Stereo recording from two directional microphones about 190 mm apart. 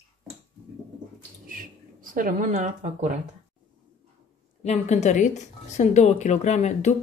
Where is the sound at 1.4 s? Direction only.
45° right (ahead or behind).